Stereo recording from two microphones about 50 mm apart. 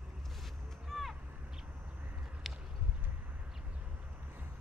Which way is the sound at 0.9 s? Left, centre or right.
Centre.